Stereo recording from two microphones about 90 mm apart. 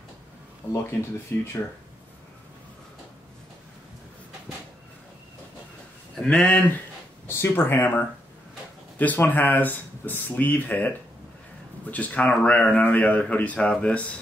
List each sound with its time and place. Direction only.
0.6 s speech: 25° left (ahead or behind)
6.3 s a man's voice: 15° left (ahead or behind)
7.2 s a man's voice: 25° left (ahead or behind)